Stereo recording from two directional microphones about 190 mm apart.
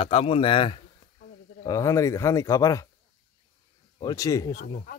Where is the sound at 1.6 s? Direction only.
15° left (ahead or behind).